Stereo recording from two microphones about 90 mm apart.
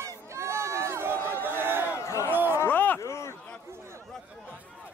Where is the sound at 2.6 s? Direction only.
20° left (ahead or behind).